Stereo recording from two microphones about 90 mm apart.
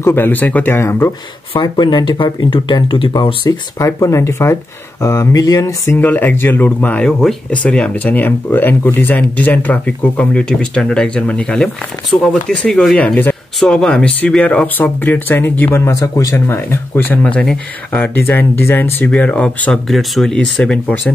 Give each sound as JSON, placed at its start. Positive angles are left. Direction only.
{"t": 0.0, "sound": "speech", "side_deg": 25}
{"t": 1.5, "sound": "speech", "side_deg": 60}
{"t": 3.4, "sound": "speech", "side_deg": 40}
{"t": 5.9, "sound": "speech", "side_deg": 20}
{"t": 13.6, "sound": "speech", "side_deg": 5}
{"t": 16.4, "sound": "speech", "side_deg": 25}
{"t": 17.4, "sound": "speech", "side_deg": 10}
{"t": 18.0, "sound": "speech", "side_deg": 20}
{"t": 19.9, "sound": "speech", "side_deg": 0}